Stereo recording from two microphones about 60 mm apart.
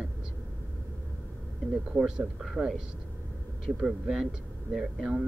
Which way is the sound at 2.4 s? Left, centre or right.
Centre.